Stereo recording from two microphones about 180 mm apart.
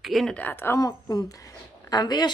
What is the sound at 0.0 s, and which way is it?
Speech, centre (ahead or behind).